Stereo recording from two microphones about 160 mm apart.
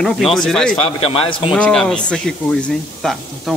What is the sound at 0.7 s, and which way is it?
Speech, 35° left (ahead or behind).